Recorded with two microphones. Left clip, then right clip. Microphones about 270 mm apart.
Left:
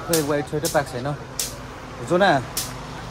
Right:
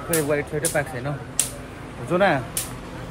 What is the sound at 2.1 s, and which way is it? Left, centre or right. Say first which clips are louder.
Speech: left 2 dB; centre.